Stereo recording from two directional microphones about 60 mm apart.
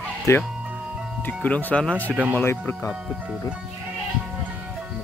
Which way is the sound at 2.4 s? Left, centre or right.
Left.